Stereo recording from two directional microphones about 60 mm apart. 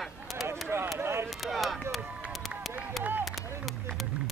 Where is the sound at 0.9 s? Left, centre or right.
Right.